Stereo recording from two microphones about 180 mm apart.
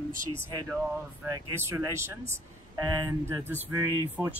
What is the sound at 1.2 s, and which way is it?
Speech, 15° right (ahead or behind).